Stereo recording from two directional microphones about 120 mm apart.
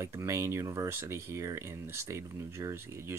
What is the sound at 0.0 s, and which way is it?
Speech, 20° right (ahead or behind).